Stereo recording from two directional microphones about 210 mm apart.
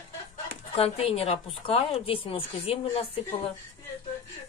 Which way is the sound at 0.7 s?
30° left (ahead or behind).